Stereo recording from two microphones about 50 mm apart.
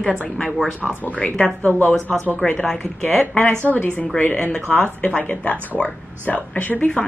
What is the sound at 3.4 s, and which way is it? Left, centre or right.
Speech, left.